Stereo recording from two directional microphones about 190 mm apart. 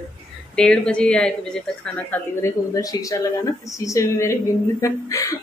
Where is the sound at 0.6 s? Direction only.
5° left (ahead or behind).